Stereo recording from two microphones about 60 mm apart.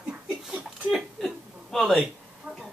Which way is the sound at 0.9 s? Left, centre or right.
Centre.